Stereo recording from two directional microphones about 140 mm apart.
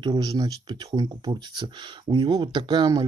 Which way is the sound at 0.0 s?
30° right (ahead or behind).